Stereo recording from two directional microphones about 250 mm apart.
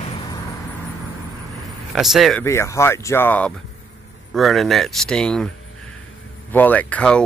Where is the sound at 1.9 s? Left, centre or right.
Centre.